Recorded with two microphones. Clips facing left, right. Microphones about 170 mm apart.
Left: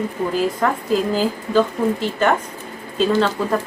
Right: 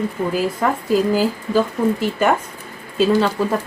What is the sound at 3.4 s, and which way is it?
Speech, 5° right (ahead or behind).